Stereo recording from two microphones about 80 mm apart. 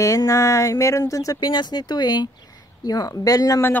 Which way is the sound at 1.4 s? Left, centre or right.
Left.